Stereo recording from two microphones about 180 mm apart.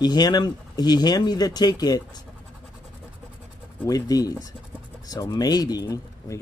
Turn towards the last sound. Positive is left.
turn(degrees=20)  # may be behind; listen again after turning